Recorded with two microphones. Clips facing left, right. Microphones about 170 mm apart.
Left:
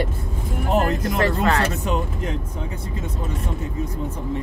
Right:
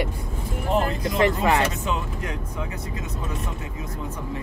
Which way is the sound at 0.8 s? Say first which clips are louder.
Left 2 dB; 50° left (ahead or behind).